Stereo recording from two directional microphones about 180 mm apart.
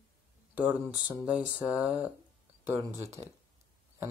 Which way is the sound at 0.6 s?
10° right (ahead or behind).